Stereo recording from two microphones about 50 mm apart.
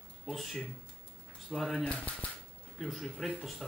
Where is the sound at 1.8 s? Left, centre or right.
Left.